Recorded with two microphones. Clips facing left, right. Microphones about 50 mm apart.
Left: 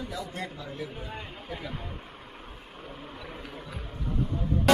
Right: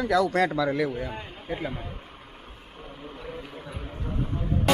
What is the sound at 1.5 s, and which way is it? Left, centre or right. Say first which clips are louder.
Speech: right 8 dB; right.